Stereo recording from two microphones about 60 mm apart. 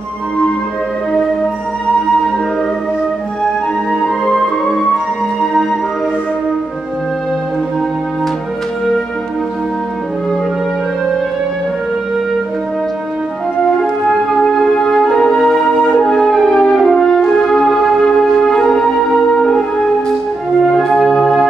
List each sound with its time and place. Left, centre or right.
14.4 s music: centre
20.7 s music: centre